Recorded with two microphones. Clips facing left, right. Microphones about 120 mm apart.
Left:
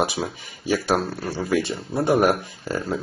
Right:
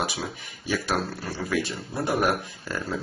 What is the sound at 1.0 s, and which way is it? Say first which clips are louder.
Speech: left 4 dB; 20° left (ahead or behind).